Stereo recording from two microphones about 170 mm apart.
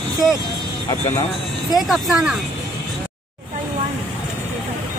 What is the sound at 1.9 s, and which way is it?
Speech, 5° right (ahead or behind).